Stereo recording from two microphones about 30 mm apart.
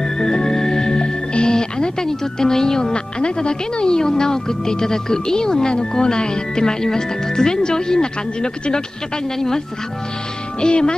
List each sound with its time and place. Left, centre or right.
0.0 s music: centre
2.0 s speech: centre
10.6 s speech: left